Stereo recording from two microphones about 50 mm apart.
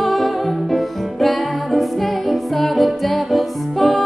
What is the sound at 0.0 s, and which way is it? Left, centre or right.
Music, centre.